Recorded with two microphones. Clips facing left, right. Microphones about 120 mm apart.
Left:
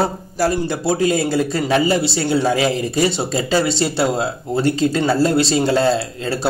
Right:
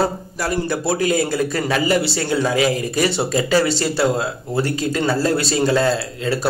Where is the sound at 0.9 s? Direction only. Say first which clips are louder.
Left 2 dB; 30° left (ahead or behind).